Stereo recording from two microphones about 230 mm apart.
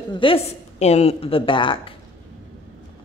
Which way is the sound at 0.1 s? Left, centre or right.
Left.